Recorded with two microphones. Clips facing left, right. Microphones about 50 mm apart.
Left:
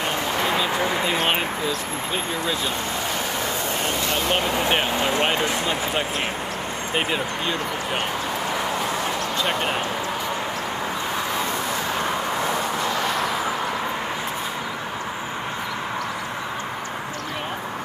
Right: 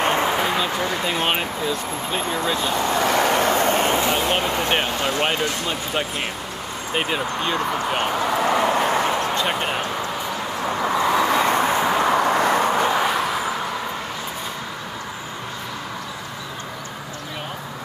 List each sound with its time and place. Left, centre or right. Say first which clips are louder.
0.2 s a sound: right 3 dB; centre
0.5 s a sound: even; centre
2.8 s vehicle: right 7 dB; right
3.8 s a sound: right 5 dB; right
4.1 s speech: right 1 dB; centre
4.9 s speech: left 1 dB; centre
7.0 s speech: right 2 dB; centre
9.4 s speech: right 1 dB; centre
11.0 s vehicle: right 10 dB; right
12.1 s vehicle: right 6 dB; right